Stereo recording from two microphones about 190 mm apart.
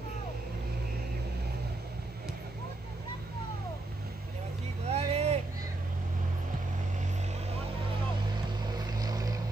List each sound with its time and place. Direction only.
4.8 s vehicle: 35° right (ahead or behind)
8.7 s vehicle: 20° right (ahead or behind)